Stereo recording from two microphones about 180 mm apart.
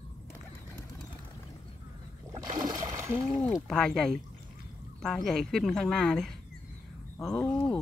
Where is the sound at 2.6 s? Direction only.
20° right (ahead or behind).